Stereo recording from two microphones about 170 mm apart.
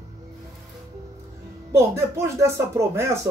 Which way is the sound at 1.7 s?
15° right (ahead or behind).